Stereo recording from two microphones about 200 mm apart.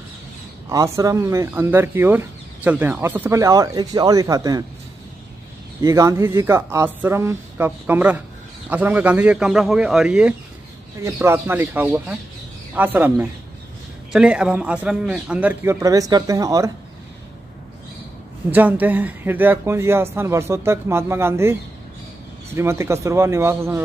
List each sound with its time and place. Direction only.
0.7 s speech: 15° right (ahead or behind)
5.8 s speech: 15° right (ahead or behind)
18.5 s speech: 10° right (ahead or behind)
22.6 s speech: 15° right (ahead or behind)